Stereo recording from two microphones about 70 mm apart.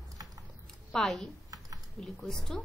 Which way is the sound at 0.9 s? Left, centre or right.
Centre.